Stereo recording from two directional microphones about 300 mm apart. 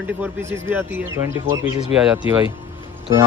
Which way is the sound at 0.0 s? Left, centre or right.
Centre.